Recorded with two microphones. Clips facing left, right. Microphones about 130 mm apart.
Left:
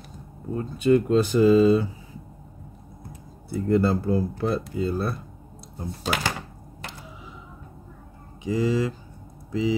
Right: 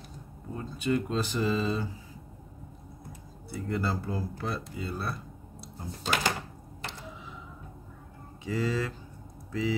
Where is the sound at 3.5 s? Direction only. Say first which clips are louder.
Left 10 dB; 45° left (ahead or behind).